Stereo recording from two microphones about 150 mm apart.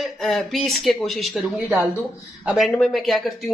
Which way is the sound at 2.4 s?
Centre (ahead or behind).